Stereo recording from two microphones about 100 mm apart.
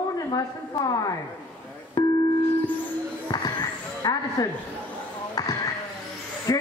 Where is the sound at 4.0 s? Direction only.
40° left (ahead or behind).